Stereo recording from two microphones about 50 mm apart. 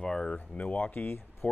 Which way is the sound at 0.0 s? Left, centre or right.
Centre.